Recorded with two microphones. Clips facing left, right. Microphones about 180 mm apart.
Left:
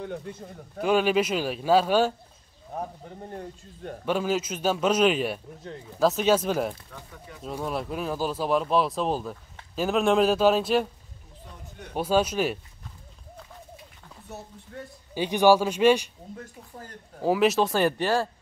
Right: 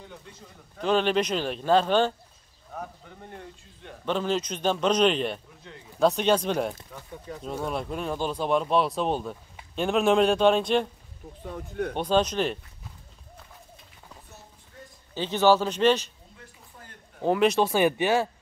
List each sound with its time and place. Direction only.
0.0 s a man's voice: 55° left (ahead or behind)
0.7 s speech: 10° left (ahead or behind)
2.7 s speech: 35° left (ahead or behind)
4.0 s speech: 10° left (ahead or behind)
7.3 s speech: 35° right (ahead or behind)
7.6 s speech: centre (ahead or behind)
11.4 s speech: 60° right (ahead or behind)
11.9 s speech: 5° left (ahead or behind)
15.1 s speech: 15° left (ahead or behind)
17.2 s speech: 5° left (ahead or behind)
17.8 s speech: 15° right (ahead or behind)